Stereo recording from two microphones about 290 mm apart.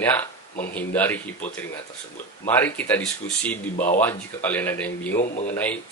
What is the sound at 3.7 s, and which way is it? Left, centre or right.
Speech, left.